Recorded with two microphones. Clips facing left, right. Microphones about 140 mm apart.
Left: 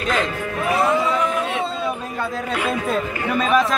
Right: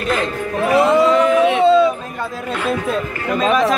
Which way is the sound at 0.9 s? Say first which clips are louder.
Right 8 dB; 90° right.